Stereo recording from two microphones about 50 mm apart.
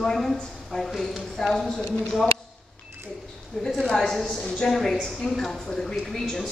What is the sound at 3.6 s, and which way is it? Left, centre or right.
A woman's voice, centre.